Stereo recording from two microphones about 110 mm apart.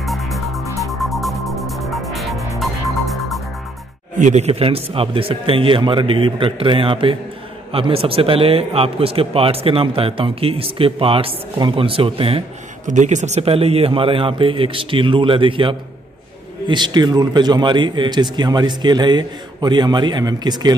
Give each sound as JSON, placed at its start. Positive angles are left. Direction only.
{"t": 0.0, "sound": "music", "side_deg": 0}
{"t": 4.2, "sound": "a man's voice", "side_deg": -70}
{"t": 12.9, "sound": "a man's voice", "side_deg": -90}